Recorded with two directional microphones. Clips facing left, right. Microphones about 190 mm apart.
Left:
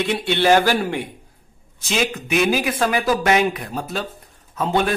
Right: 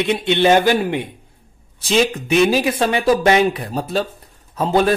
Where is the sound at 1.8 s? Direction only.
30° right (ahead or behind).